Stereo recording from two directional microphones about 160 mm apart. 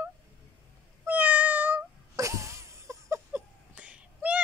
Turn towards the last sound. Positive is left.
turn(degrees=-10)  # may be behind; listen again after turning